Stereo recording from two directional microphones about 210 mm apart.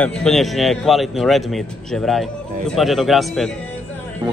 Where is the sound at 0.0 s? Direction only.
5° left (ahead or behind).